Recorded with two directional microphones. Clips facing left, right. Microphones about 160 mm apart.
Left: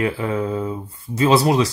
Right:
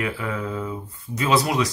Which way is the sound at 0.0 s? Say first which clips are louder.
Left 6 dB; 30° left (ahead or behind).